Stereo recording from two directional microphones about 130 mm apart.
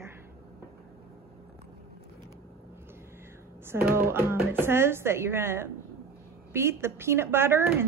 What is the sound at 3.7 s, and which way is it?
Speech, 20° right (ahead or behind).